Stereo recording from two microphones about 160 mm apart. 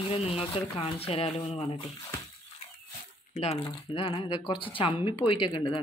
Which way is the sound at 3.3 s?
35° left (ahead or behind).